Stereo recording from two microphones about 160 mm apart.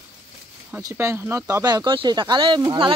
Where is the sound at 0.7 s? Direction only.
15° right (ahead or behind).